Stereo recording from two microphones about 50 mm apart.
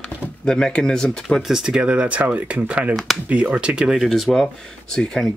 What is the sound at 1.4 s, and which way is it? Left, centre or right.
Speech, centre.